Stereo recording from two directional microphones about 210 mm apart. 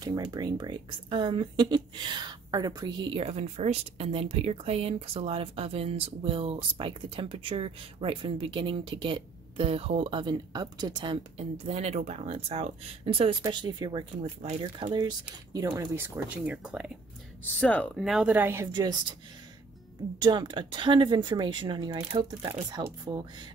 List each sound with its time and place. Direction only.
0.0 s speech: 20° right (ahead or behind)
17.6 s speech: 5° left (ahead or behind); by 18.9 s 20° right (ahead or behind)
20.2 s speech: 20° right (ahead or behind)